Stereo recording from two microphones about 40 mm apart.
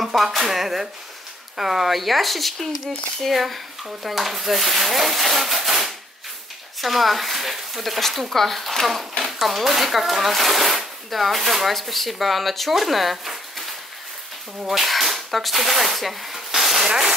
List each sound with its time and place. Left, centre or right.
0.0 s speech: centre
16.8 s rub: centre